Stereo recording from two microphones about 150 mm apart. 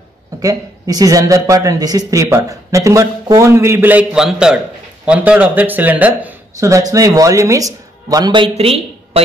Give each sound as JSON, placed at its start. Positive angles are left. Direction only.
{"t": 0.4, "sound": "speech", "side_deg": -25}
{"t": 6.6, "sound": "speech", "side_deg": -20}